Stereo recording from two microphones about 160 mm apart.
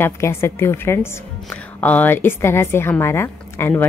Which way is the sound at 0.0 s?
15° left (ahead or behind).